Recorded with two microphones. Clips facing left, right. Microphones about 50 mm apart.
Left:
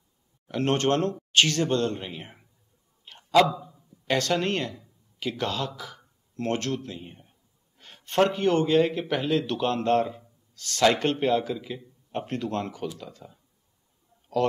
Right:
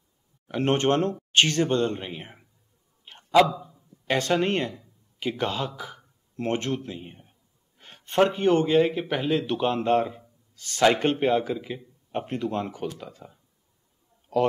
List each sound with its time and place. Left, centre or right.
0.5 s speech: centre
3.1 s a sound: centre
4.1 s a man's voice: centre